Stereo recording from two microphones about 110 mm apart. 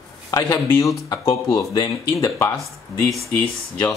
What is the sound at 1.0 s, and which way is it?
Speech, 35° left (ahead or behind).